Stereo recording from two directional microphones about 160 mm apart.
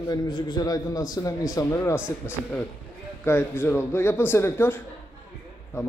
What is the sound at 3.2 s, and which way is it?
Speech, 10° left (ahead or behind).